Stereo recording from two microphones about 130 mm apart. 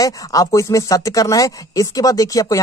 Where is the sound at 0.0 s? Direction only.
25° left (ahead or behind).